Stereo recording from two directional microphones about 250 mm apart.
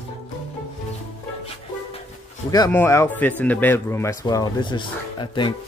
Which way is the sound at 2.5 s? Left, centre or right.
Centre.